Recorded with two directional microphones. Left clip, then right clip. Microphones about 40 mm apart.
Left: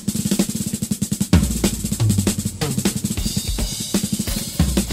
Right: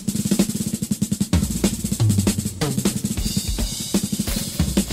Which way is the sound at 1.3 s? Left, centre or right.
Right.